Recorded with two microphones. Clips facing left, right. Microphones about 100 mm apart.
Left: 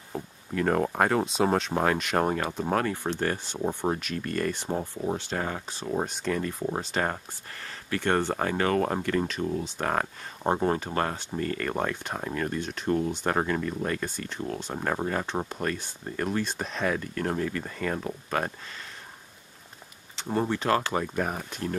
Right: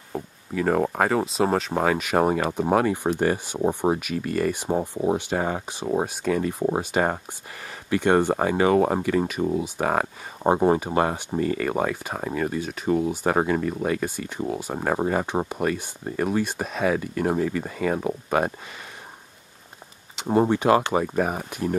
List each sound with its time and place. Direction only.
0.1 s speech: 5° right (ahead or behind)
20.2 s speech: 20° right (ahead or behind)